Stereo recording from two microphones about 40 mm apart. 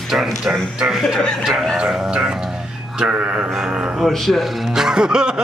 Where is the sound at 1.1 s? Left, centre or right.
Centre.